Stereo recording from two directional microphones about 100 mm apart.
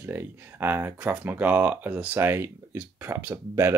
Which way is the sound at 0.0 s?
20° right (ahead or behind).